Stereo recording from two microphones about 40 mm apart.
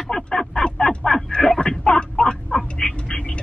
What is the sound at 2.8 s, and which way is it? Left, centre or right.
Speech, left.